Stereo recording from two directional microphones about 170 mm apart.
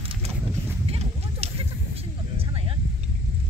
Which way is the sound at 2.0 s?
35° right (ahead or behind).